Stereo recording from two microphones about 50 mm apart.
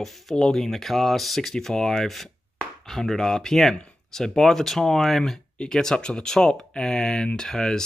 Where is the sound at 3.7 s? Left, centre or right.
Centre.